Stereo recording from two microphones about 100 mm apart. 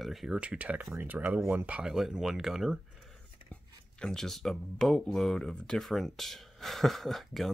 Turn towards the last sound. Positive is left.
turn(degrees=0)  # may be behind; listen again after turning